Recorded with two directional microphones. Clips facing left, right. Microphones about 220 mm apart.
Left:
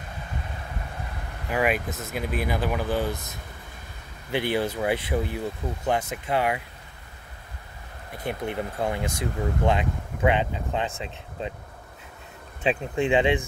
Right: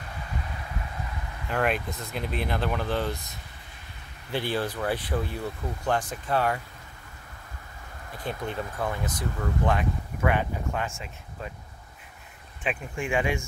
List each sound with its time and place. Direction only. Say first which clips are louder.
1.5 s speech: left 2 dB; 5° left (ahead or behind)
4.3 s speech: left 3 dB; 20° left (ahead or behind)
8.2 s speech: left 3 dB; 20° left (ahead or behind)
12.6 s speech: left 7 dB; 20° left (ahead or behind)